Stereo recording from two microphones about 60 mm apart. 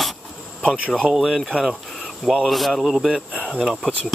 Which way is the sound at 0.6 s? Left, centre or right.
Right.